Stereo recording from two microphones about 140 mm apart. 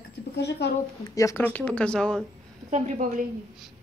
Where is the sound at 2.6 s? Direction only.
55° right (ahead or behind).